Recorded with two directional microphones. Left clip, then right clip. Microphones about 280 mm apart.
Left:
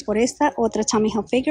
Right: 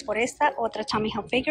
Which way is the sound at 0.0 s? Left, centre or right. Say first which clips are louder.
Left 4 dB; centre.